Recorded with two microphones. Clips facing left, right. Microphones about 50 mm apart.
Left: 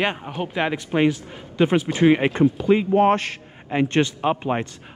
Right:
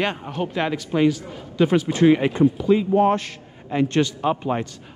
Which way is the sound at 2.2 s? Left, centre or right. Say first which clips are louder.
Even; left.